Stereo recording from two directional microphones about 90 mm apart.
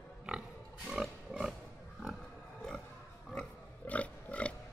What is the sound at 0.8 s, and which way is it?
Pig, 5° right (ahead or behind).